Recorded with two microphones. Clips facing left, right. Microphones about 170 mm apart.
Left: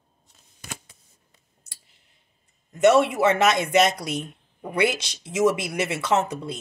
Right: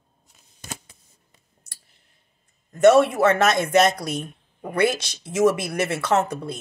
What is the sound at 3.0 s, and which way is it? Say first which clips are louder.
Speech: right 1 dB; 15° left (ahead or behind).